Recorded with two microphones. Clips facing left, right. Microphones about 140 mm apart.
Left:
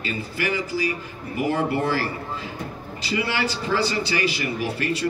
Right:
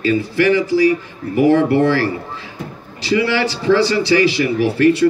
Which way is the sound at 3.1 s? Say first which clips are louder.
Right 8 dB; 90° right.